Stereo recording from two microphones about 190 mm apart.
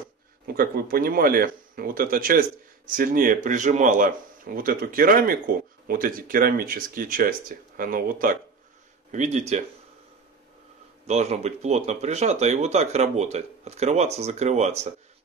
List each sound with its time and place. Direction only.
0.5 s speech: 50° right (ahead or behind)
11.1 s speech: 35° right (ahead or behind)